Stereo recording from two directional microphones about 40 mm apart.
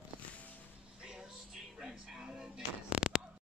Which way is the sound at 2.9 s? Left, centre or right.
Right.